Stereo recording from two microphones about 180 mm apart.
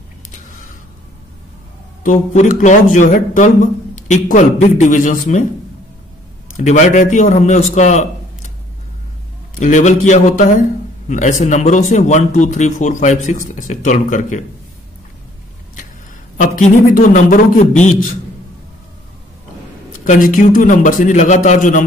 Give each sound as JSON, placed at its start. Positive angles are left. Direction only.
{"t": 2.0, "sound": "speech", "side_deg": 45}
{"t": 6.5, "sound": "a man's voice", "side_deg": 40}
{"t": 9.6, "sound": "speech", "side_deg": 45}
{"t": 16.3, "sound": "speech", "side_deg": 45}
{"t": 20.1, "sound": "speech", "side_deg": 50}